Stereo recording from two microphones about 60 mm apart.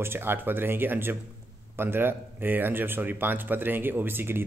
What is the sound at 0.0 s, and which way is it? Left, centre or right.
Speech, right.